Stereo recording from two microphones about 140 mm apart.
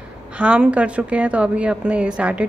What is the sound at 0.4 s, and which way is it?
A woman's voice, 10° right (ahead or behind).